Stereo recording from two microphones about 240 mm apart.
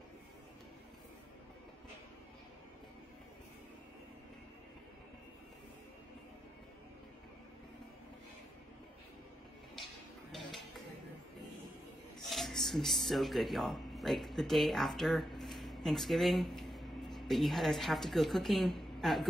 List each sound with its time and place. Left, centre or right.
10.3 s music: centre
12.2 s speech: centre